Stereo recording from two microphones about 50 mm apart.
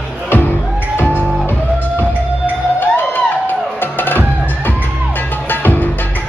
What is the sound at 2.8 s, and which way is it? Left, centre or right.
Music, left.